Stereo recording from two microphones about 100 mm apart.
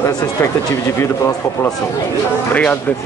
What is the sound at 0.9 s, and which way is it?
Speech, 25° left (ahead or behind).